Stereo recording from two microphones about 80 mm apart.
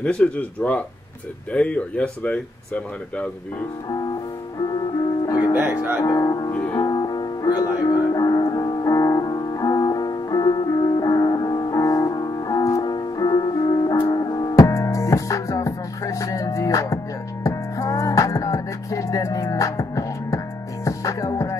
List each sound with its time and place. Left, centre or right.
0.0 s speech: centre
3.9 s music: left
5.6 s speech: right
6.0 s speech: left
6.8 s music: left
12.8 s music: left